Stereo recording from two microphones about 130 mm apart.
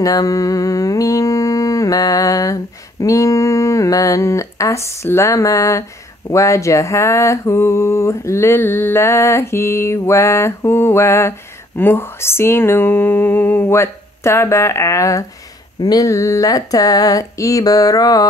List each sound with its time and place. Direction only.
0.0 s mantra: 25° left (ahead or behind)